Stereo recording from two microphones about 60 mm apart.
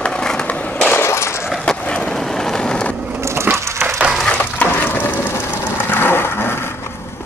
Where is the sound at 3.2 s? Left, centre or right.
Right.